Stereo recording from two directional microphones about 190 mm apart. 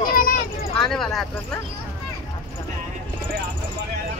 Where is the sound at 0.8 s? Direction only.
Centre (ahead or behind).